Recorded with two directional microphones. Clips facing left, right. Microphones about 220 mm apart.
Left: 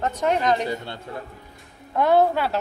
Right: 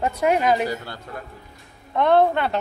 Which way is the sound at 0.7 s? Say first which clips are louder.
Left 1 dB; 25° left (ahead or behind).